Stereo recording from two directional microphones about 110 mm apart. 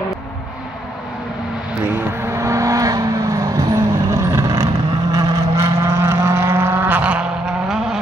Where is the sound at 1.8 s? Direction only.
20° right (ahead or behind).